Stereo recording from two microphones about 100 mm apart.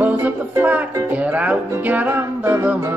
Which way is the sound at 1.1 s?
15° right (ahead or behind).